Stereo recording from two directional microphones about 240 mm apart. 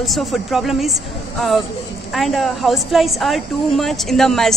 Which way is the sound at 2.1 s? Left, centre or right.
Centre.